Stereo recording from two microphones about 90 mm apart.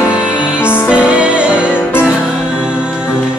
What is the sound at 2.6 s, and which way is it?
Music, 10° right (ahead or behind).